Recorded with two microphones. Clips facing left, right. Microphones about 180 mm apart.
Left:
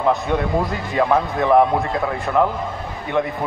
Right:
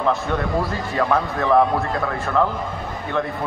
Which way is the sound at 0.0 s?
15° left (ahead or behind).